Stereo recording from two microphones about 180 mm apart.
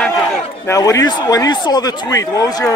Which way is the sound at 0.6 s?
20° left (ahead or behind).